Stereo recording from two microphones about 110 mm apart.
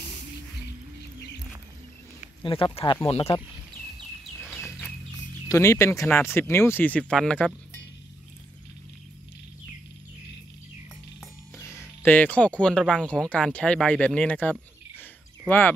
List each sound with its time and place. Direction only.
2.4 s speech: 55° left (ahead or behind)
5.5 s speech: 30° left (ahead or behind); by 7.5 s 10° left (ahead or behind)
12.0 s speech: 15° left (ahead or behind)